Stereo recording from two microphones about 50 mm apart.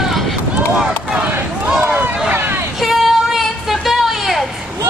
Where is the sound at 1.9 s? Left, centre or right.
Right.